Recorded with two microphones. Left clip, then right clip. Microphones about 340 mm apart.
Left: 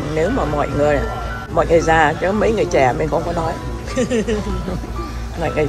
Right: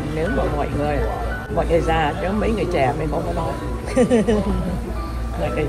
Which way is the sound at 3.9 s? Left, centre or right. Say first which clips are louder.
Right 2 dB; centre.